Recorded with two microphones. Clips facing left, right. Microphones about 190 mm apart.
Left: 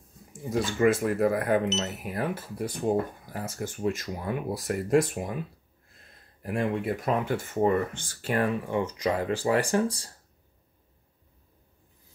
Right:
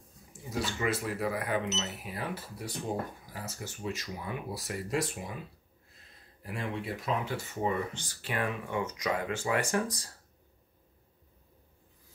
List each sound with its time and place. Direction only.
0.3 s speech: 50° left (ahead or behind)
6.4 s speech: 55° left (ahead or behind); by 10.1 s 30° left (ahead or behind)